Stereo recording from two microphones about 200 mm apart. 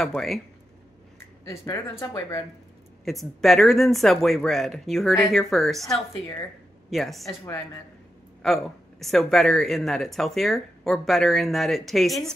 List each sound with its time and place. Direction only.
0.0 s speech: centre (ahead or behind)
2.1 s speech: 15° left (ahead or behind)
3.1 s speech: centre (ahead or behind)
7.2 s speech: 15° left (ahead or behind)
8.4 s speech: centre (ahead or behind)